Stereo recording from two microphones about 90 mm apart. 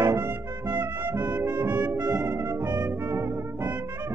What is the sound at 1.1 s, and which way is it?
Brass instrument, 50° right (ahead or behind).